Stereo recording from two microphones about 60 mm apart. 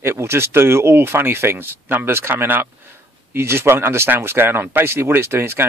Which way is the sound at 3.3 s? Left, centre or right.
Right.